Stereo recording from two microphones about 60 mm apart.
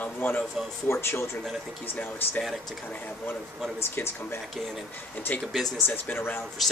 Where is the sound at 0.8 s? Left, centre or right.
Left.